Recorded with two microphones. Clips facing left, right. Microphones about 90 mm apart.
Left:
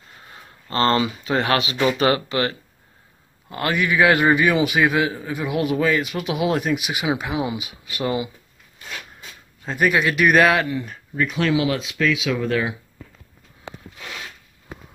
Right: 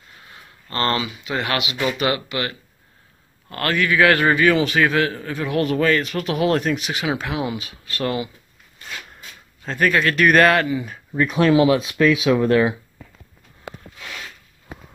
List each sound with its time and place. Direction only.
0.3 s a sound: 25° left (ahead or behind)
1.1 s speech: 35° left (ahead or behind)
3.4 s a man's voice: 15° left (ahead or behind)
9.7 s a man's voice: 10° left (ahead or behind)
11.1 s speech: 35° right (ahead or behind)